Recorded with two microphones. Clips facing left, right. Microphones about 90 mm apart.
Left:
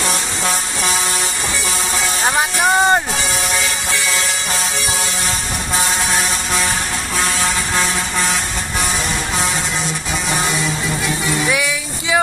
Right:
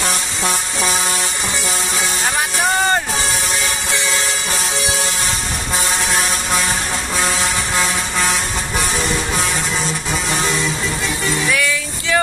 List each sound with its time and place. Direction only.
2.3 s music: 20° left (ahead or behind)
11.2 s music: 15° left (ahead or behind)